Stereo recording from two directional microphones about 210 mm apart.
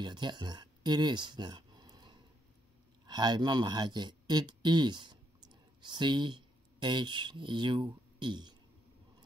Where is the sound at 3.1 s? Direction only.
20° right (ahead or behind).